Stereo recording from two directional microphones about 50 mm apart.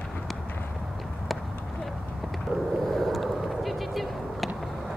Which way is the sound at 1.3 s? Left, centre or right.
Centre.